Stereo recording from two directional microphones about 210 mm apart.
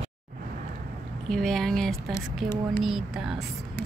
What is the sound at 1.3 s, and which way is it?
Speech, centre (ahead or behind).